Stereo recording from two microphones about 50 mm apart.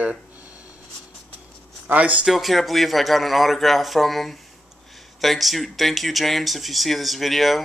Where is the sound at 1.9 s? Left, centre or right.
Right.